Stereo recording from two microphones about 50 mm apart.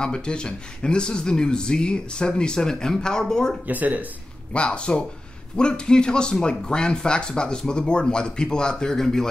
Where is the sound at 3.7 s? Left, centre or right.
Right.